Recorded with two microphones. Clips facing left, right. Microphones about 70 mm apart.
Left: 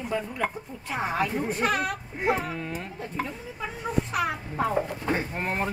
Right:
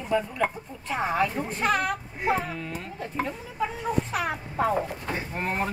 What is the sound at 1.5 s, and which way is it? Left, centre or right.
Speech, centre.